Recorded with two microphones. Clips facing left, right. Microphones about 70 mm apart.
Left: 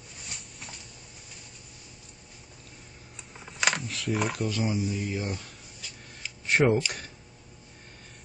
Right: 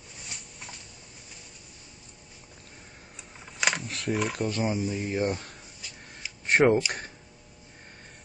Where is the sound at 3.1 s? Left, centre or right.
Centre.